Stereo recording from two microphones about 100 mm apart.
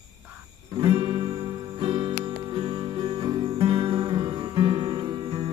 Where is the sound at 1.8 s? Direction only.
70° right (ahead or behind).